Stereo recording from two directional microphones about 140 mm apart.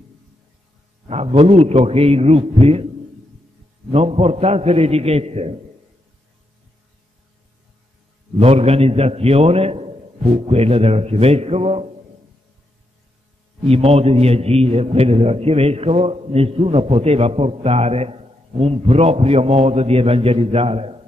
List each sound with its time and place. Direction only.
1.0 s a sound: 50° right (ahead or behind)
1.4 s a man's voice: 45° right (ahead or behind)
3.9 s a man's voice: 45° right (ahead or behind)
8.4 s a man's voice: 45° right (ahead or behind)
13.7 s a man's voice: 45° right (ahead or behind)